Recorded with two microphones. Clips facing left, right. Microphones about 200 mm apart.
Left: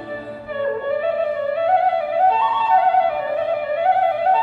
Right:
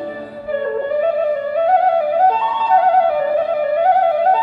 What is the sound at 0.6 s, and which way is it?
Music, 45° right (ahead or behind).